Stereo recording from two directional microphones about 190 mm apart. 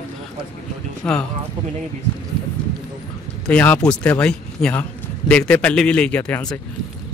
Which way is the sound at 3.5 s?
5° left (ahead or behind).